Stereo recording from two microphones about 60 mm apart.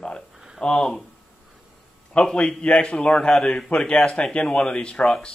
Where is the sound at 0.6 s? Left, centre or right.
Centre.